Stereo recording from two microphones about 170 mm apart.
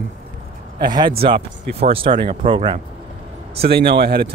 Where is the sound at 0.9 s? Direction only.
25° right (ahead or behind).